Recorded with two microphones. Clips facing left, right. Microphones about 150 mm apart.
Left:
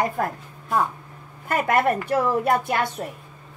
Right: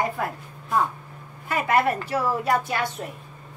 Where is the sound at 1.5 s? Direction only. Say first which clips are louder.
Left 1 dB; 50° left (ahead or behind).